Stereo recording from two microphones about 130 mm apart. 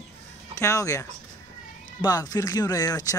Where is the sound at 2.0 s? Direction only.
30° left (ahead or behind).